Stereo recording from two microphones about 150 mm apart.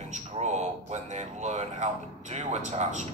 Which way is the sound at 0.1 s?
50° right (ahead or behind).